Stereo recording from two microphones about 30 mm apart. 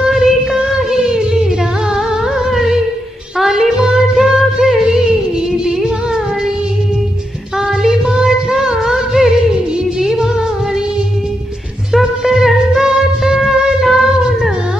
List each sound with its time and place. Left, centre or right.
0.2 s music: centre
8.0 s a sound: right
8.5 s music: centre
12.2 s music: centre